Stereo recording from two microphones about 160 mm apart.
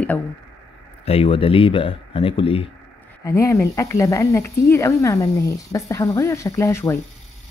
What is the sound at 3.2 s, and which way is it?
A woman's voice, 20° left (ahead or behind).